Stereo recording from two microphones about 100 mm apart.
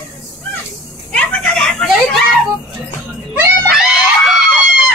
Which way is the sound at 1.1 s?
10° left (ahead or behind).